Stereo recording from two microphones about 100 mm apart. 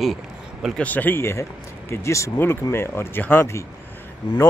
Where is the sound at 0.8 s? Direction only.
15° left (ahead or behind).